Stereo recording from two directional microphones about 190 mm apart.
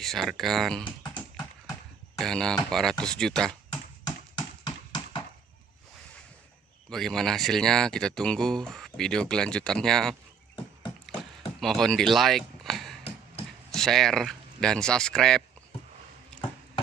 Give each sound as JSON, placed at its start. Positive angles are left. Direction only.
{"t": 0.0, "sound": "speech", "side_deg": 0}
{"t": 4.4, "sound": "clip-clop", "side_deg": 25}
{"t": 6.9, "sound": "speech", "side_deg": 0}
{"t": 11.6, "sound": "speech", "side_deg": 0}
{"t": 13.0, "sound": "a sound", "side_deg": 35}
{"t": 13.7, "sound": "speech", "side_deg": 0}